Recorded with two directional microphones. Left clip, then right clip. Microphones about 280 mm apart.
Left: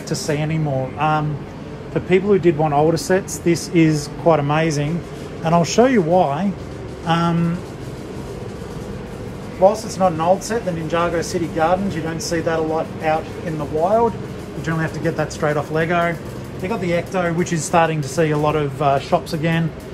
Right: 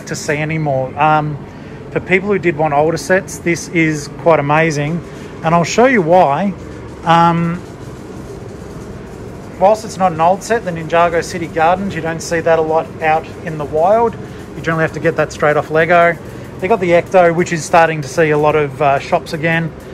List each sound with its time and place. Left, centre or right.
0.1 s speech: centre
9.6 s speech: centre